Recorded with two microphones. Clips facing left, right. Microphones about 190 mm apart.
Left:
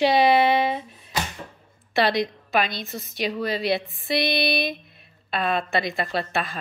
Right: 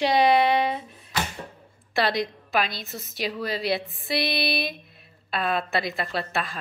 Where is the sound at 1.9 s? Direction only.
Centre (ahead or behind).